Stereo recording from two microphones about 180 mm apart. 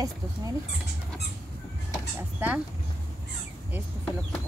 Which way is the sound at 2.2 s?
10° right (ahead or behind).